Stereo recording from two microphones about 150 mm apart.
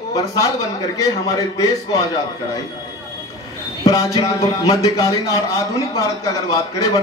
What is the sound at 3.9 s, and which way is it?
Speech, 25° left (ahead or behind).